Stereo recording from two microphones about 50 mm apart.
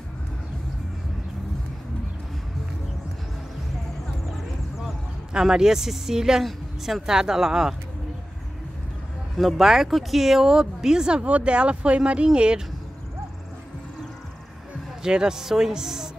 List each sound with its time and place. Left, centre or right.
4.8 s speech: centre
9.4 s speech: centre
15.0 s speech: centre